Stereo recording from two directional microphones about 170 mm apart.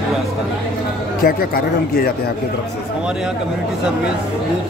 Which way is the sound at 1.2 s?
60° left (ahead or behind).